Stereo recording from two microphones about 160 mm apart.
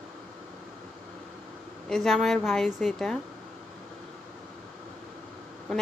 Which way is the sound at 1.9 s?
5° left (ahead or behind).